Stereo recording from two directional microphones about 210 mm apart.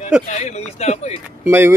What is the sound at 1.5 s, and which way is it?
Speech, 10° right (ahead or behind).